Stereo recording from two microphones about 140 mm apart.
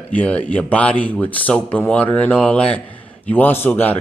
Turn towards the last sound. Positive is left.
turn(degrees=15)  # may be behind; listen again after turning